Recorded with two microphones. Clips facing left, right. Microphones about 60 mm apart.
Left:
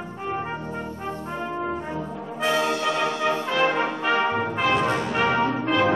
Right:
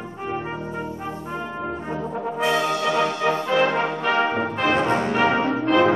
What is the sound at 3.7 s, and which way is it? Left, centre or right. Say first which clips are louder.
Brass instrument: right 2 dB; centre.